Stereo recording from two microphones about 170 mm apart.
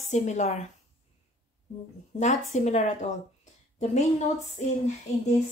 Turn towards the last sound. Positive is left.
turn(degrees=45)  # may be behind; listen again after turning